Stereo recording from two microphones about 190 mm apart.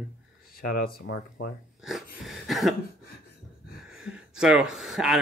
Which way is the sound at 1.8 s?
Centre (ahead or behind).